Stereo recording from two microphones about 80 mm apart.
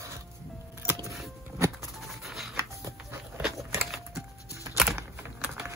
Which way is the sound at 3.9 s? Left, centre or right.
Centre.